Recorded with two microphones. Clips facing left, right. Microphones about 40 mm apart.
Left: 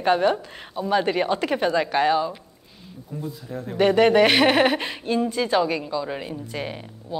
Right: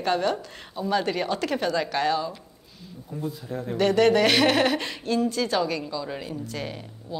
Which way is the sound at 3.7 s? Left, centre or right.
Centre.